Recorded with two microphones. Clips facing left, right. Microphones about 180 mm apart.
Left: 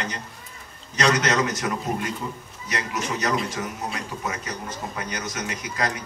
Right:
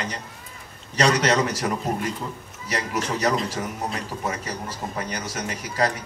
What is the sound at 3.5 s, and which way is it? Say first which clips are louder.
A man's voice: right 1 dB; 35° right (ahead or behind).